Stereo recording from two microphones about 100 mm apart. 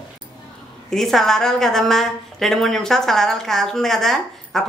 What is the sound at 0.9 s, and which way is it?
A woman's voice, 5° left (ahead or behind).